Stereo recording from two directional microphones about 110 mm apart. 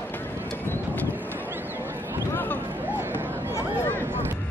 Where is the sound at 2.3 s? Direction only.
15° left (ahead or behind).